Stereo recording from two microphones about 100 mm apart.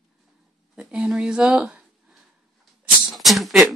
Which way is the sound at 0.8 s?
10° right (ahead or behind).